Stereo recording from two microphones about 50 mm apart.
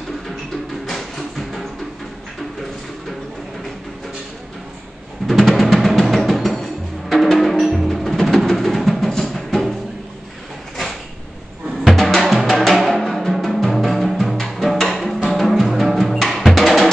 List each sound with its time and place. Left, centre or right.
0.8 s music: centre
5.2 s music: centre
11.8 s music: centre
12.9 s music: centre